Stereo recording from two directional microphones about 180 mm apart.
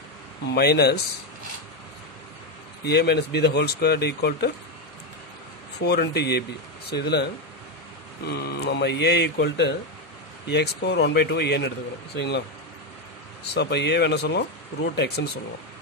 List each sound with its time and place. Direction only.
0.5 s speech: 65° left (ahead or behind)
2.8 s speech: 65° left (ahead or behind)
5.8 s speech: 65° left (ahead or behind)
8.3 s speech: 65° left (ahead or behind)
13.5 s speech: 70° left (ahead or behind)